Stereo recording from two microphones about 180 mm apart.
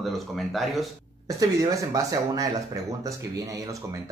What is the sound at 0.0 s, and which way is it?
Speech, centre (ahead or behind).